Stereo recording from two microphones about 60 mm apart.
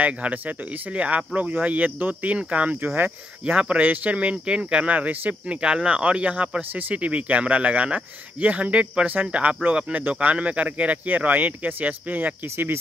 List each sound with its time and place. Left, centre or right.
0.0 s speech: right
5.6 s speech: centre
12.4 s speech: right